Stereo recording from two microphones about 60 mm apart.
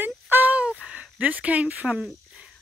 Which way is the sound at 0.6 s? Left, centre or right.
Centre.